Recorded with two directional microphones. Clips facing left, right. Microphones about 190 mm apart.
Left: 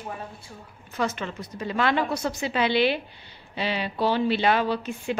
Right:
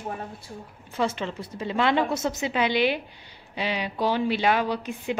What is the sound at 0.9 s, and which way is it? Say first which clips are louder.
A woman's voice: right 1 dB; 25° right (ahead or behind).